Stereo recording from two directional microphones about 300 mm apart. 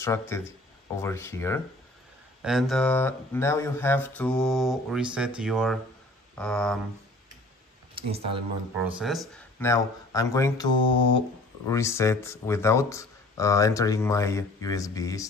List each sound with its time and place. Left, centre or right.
0.0 s speech: centre
7.9 s speech: centre
8.7 s speech: centre